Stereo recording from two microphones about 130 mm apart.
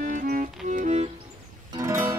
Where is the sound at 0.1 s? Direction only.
90° right; by 1.0 s 70° right (ahead or behind).